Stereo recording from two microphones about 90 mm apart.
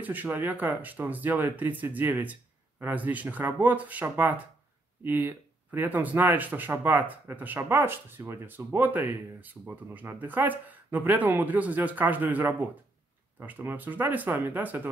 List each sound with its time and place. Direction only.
0.0 s speech: 20° right (ahead or behind)